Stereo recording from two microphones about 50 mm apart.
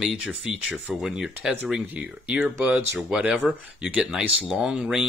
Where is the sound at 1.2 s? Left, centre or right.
Centre.